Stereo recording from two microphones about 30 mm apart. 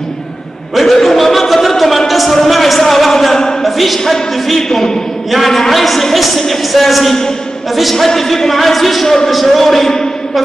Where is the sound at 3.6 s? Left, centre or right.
Centre.